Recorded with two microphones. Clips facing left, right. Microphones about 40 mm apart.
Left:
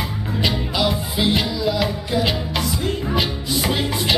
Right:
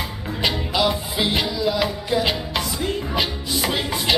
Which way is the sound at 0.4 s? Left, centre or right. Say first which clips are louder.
Even; centre.